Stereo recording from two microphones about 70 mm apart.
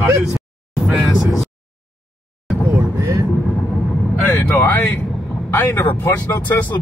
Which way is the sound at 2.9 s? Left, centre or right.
Right.